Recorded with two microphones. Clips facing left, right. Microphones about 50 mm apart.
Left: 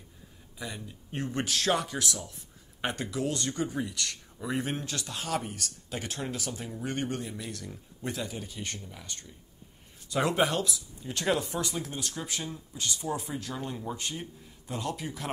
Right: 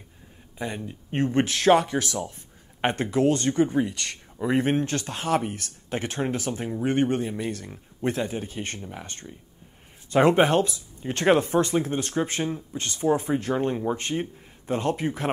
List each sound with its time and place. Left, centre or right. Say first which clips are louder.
0.6 s speech: right 8 dB; right